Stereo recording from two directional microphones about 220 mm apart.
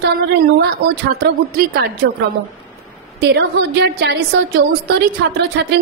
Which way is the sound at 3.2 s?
50° right (ahead or behind).